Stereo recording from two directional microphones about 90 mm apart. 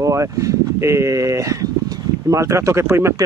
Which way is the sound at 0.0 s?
35° right (ahead or behind).